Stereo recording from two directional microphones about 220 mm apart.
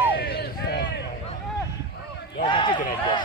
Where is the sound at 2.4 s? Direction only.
20° left (ahead or behind).